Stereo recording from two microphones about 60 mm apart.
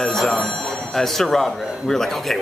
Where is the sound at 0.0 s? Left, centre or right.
Centre.